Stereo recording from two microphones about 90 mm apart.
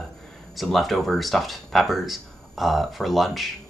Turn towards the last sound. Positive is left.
turn(degrees=0)  # may be behind; listen again after turning